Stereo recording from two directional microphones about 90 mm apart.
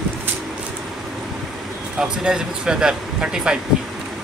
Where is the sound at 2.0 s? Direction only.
10° right (ahead or behind).